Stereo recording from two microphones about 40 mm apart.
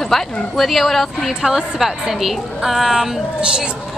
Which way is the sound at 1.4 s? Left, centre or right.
Centre.